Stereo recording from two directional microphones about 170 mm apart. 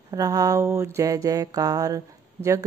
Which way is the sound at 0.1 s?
20° right (ahead or behind).